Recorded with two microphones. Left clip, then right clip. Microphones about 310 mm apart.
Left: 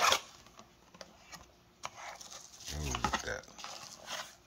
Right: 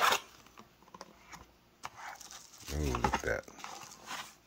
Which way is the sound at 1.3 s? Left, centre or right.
Centre.